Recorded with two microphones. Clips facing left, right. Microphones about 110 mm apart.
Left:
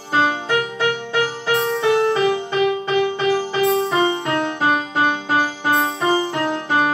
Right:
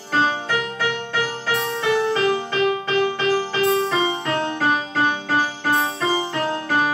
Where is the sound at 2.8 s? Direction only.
15° left (ahead or behind).